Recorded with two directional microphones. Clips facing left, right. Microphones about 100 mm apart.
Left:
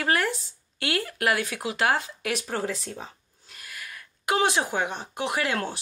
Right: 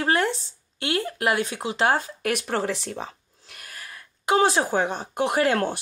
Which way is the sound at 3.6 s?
35° right (ahead or behind).